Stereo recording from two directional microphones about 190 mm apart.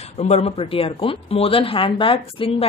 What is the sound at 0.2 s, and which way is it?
Speech, 35° left (ahead or behind).